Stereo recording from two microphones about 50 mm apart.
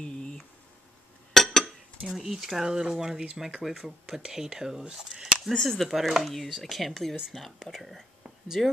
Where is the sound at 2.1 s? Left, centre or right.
Centre.